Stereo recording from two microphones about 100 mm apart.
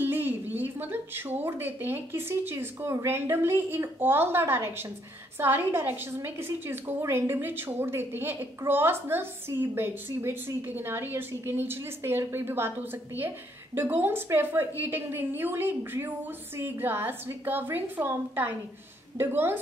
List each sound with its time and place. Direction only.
0.0 s a woman's voice: 20° right (ahead or behind)